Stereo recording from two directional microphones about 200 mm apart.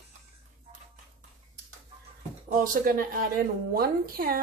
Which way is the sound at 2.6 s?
45° right (ahead or behind).